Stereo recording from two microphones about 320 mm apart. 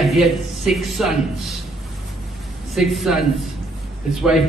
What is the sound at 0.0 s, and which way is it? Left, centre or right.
Speech, centre.